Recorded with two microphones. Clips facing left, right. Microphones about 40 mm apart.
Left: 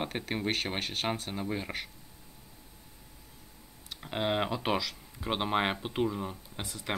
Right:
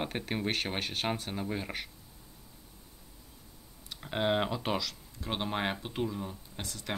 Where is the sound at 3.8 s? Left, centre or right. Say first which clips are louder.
Right 1 dB; centre.